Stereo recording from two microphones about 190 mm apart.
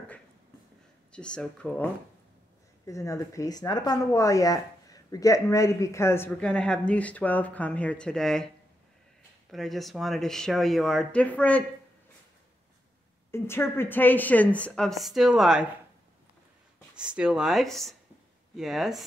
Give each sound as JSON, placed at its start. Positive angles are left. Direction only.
{"t": 1.1, "sound": "speech", "side_deg": 5}
{"t": 2.9, "sound": "speech", "side_deg": 15}
{"t": 9.5, "sound": "speech", "side_deg": 0}
{"t": 13.3, "sound": "speech", "side_deg": 10}
{"t": 17.1, "sound": "speech", "side_deg": -5}